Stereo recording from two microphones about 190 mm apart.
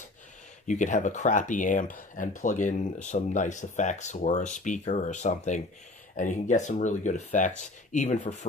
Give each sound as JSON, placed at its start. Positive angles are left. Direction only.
{"t": 0.7, "sound": "speech", "side_deg": 40}